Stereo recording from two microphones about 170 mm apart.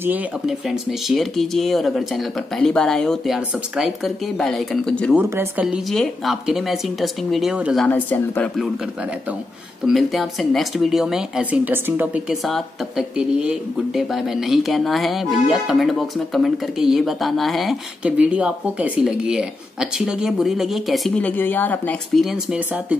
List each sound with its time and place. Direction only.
0.0 s speech: 5° right (ahead or behind)
5.1 s speech: 15° right (ahead or behind)
7.8 s speech: 10° left (ahead or behind)
9.8 s speech: centre (ahead or behind)